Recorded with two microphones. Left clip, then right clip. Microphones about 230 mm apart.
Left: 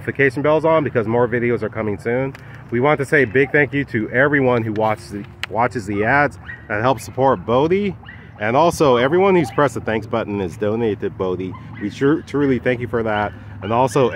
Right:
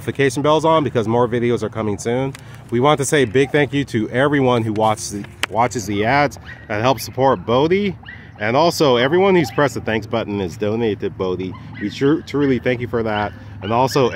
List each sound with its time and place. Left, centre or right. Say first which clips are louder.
0.0 s speech: left 1 dB; centre
5.4 s a sound: right 3 dB; right
5.8 s speech: even; centre